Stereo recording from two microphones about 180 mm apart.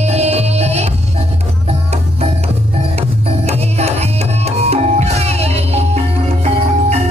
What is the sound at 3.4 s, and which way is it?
Music, 35° right (ahead or behind).